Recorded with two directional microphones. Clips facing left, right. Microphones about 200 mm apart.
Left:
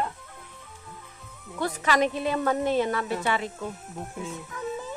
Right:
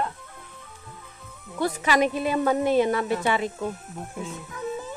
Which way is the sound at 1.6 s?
10° right (ahead or behind).